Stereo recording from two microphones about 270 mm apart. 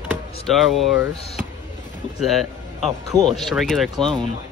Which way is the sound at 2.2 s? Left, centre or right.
Centre.